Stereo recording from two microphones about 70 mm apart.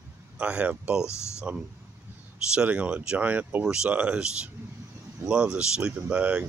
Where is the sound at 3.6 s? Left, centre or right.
Centre.